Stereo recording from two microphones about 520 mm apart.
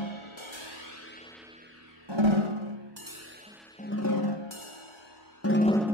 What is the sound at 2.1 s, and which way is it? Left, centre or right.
Music, right.